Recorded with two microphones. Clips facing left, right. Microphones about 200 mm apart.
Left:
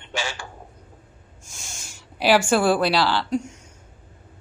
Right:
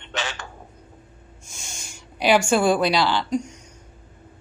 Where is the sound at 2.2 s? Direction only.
5° left (ahead or behind).